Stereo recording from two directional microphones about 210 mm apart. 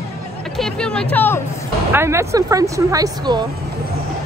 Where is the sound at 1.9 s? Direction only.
10° right (ahead or behind).